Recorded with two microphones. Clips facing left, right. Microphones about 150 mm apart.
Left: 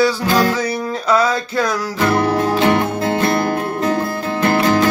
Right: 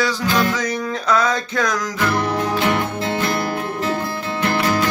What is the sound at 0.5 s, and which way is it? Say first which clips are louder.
Music: left 2 dB; 10° left (ahead or behind).